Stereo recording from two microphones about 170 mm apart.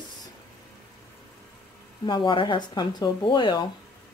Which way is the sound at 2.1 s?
30° left (ahead or behind).